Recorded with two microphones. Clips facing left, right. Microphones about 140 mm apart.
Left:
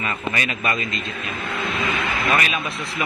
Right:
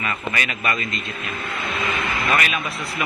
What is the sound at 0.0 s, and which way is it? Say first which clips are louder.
Speech: left 1 dB; 30° left (ahead or behind).